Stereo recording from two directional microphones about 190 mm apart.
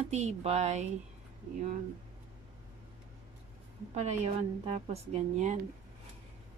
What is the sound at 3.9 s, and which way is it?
A woman's voice, 35° right (ahead or behind).